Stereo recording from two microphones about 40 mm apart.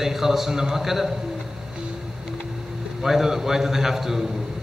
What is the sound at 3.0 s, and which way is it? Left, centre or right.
Speech, centre.